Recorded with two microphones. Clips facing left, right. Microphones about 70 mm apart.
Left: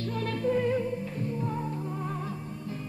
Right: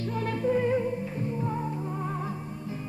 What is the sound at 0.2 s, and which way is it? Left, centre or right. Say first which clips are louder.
Music: right 1 dB; centre.